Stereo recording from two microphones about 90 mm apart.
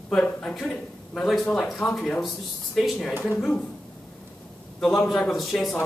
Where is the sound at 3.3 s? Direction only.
20° left (ahead or behind).